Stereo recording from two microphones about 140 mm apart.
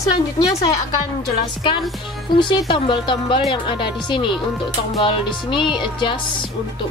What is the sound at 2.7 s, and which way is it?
Speech, 35° left (ahead or behind).